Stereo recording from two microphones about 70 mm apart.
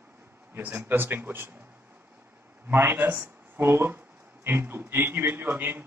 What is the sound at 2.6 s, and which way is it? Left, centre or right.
A man's voice, right.